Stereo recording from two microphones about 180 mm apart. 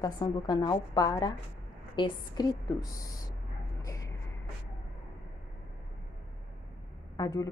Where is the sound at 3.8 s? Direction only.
15° left (ahead or behind).